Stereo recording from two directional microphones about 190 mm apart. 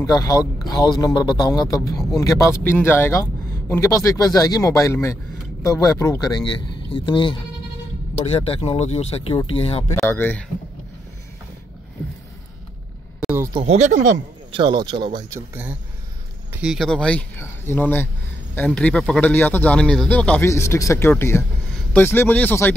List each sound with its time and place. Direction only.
0.0 s speech: 20° left (ahead or behind)
9.9 s speech: 10° left (ahead or behind)
13.2 s a sound: 10° right (ahead or behind)
13.5 s speech: 25° right (ahead or behind)
16.6 s speech: centre (ahead or behind)